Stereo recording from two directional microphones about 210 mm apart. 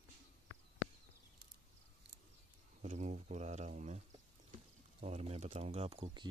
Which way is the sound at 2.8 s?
30° right (ahead or behind).